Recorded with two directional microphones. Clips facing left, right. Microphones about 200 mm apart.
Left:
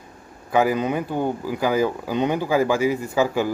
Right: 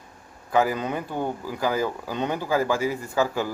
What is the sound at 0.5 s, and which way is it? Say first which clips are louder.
Speech: left 3 dB; 10° left (ahead or behind).